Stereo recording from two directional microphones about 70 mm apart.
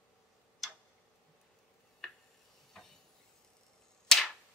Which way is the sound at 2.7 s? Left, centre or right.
Centre.